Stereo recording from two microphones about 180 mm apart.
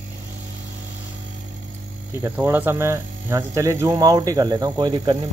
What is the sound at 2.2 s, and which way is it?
Speech, 15° right (ahead or behind).